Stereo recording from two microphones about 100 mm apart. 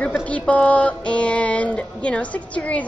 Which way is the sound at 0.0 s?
15° left (ahead or behind).